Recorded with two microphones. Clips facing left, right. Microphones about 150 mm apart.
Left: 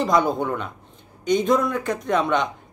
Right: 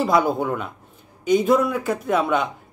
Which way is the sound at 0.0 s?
5° right (ahead or behind).